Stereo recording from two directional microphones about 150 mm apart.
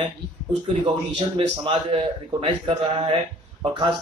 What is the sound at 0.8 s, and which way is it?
A man's voice, 35° right (ahead or behind).